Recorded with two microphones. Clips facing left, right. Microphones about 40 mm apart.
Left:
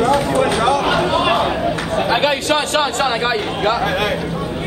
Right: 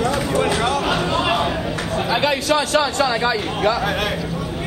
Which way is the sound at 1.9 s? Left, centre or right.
Left.